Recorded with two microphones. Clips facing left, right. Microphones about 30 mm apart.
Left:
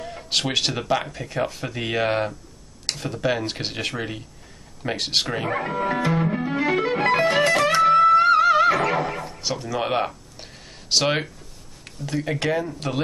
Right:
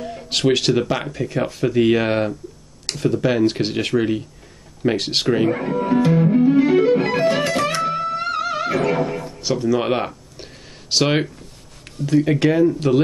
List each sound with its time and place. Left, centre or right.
0.0 s speech: centre
5.6 s music: centre
7.8 s music: left
8.3 s music: centre
9.3 s a sound: centre
12.1 s speech: centre